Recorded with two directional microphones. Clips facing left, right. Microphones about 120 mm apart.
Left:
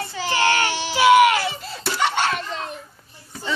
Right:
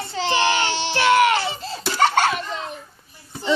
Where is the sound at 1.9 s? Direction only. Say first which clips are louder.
Right 4 dB; 40° right (ahead or behind).